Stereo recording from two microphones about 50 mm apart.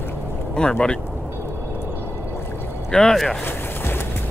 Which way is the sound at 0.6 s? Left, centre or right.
Centre.